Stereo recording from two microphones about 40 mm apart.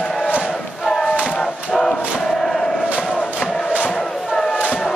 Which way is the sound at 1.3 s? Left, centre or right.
Centre.